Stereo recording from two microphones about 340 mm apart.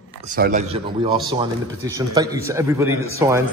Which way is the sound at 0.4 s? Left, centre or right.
Right.